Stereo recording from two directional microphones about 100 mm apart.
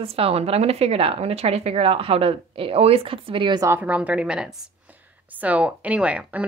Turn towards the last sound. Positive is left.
turn(degrees=-15)  # may be behind; listen again after turning